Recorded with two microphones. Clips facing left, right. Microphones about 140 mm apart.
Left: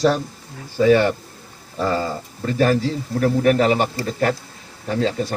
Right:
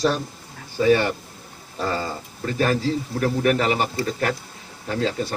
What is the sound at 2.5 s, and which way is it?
A man's voice, 30° left (ahead or behind).